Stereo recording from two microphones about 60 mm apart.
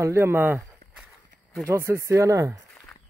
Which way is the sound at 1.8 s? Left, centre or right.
Right.